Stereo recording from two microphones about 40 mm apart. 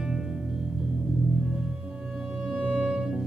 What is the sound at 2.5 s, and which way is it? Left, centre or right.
Music, centre.